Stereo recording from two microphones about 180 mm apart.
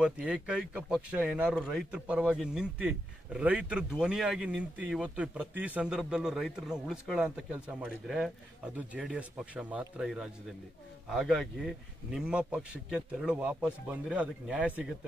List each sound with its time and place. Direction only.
0.0 s a man's voice: 5° right (ahead or behind)